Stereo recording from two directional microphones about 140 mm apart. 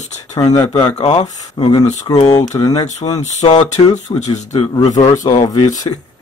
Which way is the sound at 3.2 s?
55° left (ahead or behind).